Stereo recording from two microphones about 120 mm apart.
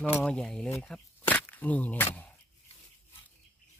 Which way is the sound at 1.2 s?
15° left (ahead or behind).